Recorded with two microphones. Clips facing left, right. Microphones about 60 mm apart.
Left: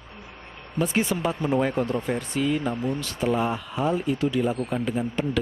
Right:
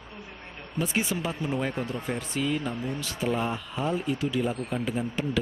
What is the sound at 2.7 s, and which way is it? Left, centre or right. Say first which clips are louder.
Speech: left 5 dB; left.